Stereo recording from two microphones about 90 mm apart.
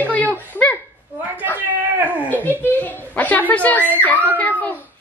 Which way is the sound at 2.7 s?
15° left (ahead or behind).